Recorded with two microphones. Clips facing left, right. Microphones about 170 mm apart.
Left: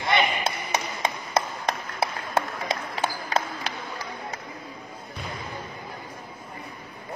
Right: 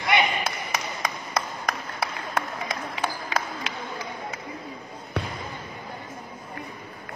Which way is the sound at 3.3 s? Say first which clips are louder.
Left 3 dB; 40° left (ahead or behind).